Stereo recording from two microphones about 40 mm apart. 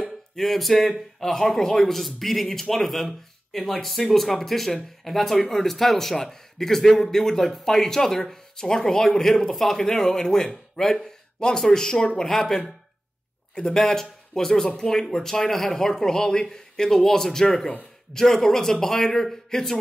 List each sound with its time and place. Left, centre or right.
0.4 s speech: centre
13.7 s speech: centre